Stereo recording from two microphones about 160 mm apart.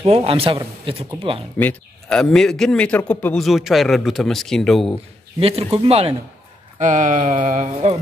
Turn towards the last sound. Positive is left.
turn(degrees=-55)  # may be behind; listen again after turning